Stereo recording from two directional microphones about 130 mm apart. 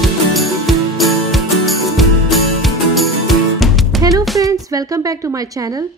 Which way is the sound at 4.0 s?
30° right (ahead or behind).